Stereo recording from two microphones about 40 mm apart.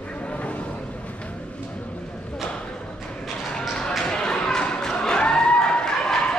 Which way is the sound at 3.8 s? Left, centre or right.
Left.